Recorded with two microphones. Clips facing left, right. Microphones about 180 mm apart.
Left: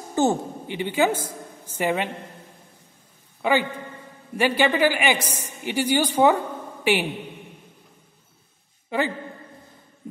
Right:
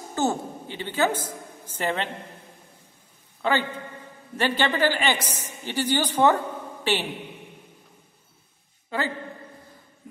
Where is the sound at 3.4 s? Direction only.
10° left (ahead or behind).